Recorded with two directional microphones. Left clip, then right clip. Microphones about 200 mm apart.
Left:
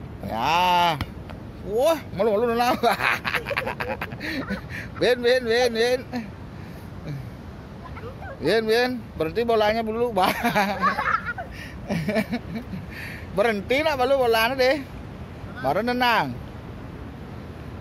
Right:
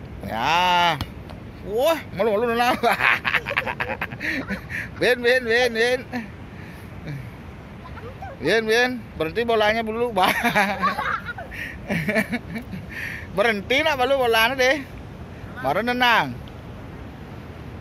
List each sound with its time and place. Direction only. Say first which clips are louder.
0.3 s speech: right 1 dB; centre (ahead or behind)
8.4 s speech: right 2 dB; centre (ahead or behind)